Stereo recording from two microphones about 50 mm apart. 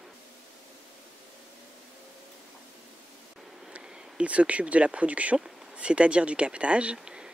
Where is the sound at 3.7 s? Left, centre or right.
Right.